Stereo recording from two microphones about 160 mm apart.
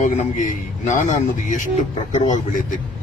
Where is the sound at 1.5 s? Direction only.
50° left (ahead or behind).